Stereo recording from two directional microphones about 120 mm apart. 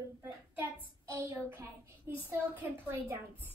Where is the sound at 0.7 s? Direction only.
20° right (ahead or behind).